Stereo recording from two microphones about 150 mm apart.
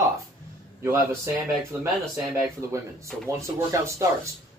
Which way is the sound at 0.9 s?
20° right (ahead or behind).